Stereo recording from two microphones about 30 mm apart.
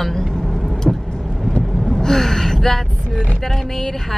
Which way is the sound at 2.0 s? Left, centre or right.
Centre.